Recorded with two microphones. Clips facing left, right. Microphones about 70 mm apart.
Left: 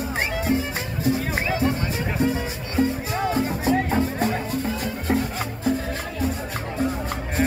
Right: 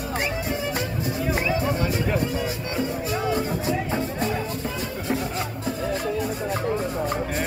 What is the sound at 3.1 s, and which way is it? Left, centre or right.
Music, left.